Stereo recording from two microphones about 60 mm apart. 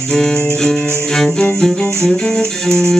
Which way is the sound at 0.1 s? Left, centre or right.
Centre.